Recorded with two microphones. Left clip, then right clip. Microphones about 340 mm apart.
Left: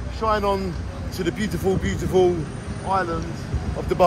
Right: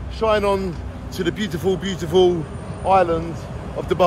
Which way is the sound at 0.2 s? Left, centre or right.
Centre.